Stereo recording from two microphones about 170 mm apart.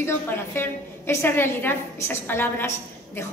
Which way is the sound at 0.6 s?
15° left (ahead or behind).